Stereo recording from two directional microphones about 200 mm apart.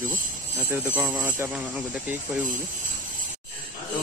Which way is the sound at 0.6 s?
10° right (ahead or behind).